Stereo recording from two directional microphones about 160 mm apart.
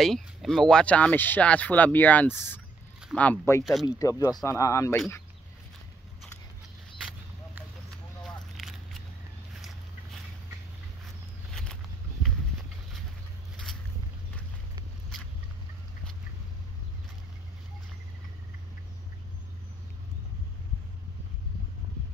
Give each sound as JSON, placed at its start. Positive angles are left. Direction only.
{"t": 0.0, "sound": "speech", "side_deg": 0}
{"t": 8.5, "sound": "single-lens reflex camera", "side_deg": 0}
{"t": 11.5, "sound": "a sound", "side_deg": 5}